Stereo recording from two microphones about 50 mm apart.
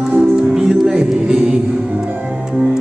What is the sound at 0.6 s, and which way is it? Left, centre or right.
Music, centre.